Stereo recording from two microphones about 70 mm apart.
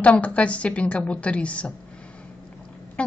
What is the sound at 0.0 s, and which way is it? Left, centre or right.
Speech, centre.